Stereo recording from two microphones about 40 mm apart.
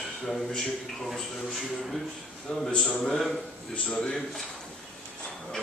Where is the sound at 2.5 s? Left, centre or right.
Centre.